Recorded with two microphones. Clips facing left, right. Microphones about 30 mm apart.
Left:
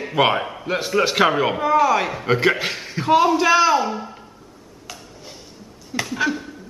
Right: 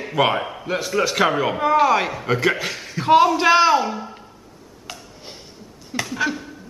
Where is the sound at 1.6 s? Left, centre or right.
Centre.